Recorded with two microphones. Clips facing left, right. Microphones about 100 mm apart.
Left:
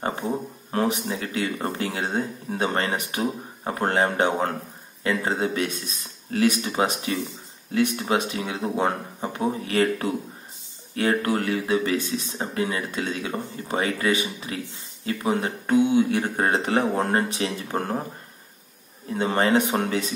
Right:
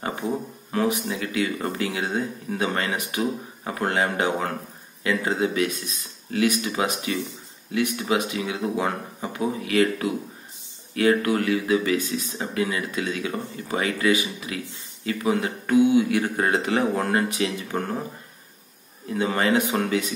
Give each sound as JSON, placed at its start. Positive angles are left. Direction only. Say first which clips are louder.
{"t": 0.7, "sound": "speech", "louder": "even", "side_deg": 35}
{"t": 19.0, "sound": "speech", "louder": "left 1 dB", "side_deg": 30}